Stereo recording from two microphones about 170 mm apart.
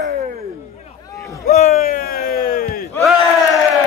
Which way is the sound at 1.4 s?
45° left (ahead or behind).